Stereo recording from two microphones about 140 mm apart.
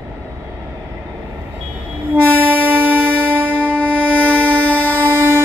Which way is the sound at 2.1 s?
15° right (ahead or behind).